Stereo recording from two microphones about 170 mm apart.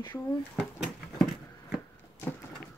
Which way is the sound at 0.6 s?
Centre (ahead or behind).